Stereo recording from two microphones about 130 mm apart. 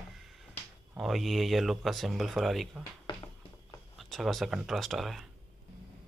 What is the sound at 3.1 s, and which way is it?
Music, 30° left (ahead or behind).